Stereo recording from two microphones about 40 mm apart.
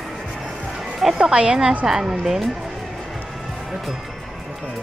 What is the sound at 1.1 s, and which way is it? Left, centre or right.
A woman's voice, right.